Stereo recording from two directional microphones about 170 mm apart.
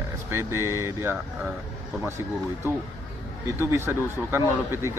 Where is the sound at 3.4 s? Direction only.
15° right (ahead or behind).